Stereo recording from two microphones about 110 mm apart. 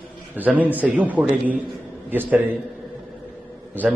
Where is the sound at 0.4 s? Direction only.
15° right (ahead or behind).